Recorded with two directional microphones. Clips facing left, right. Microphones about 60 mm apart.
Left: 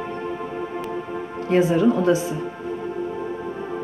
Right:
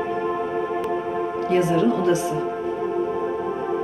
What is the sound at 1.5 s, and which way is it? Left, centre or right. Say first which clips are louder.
Speech: left 2 dB; left.